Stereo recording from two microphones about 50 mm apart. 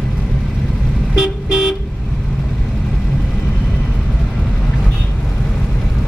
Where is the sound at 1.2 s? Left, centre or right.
Centre.